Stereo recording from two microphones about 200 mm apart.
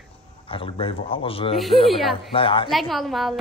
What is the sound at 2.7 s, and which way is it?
Speech, centre (ahead or behind).